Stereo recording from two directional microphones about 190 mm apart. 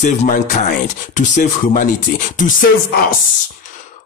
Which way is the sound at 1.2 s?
45° left (ahead or behind).